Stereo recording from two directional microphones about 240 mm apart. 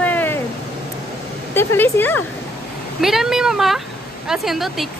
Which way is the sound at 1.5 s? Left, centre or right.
Centre.